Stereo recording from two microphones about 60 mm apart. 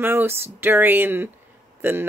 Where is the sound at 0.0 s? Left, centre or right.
Right.